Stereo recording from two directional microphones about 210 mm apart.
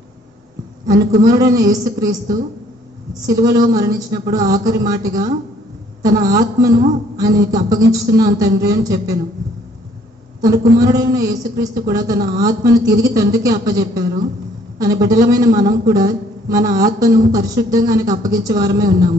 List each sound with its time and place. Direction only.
0.9 s speech: 40° right (ahead or behind)
1.3 s speech: 15° right (ahead or behind)
10.8 s speech: 15° right (ahead or behind)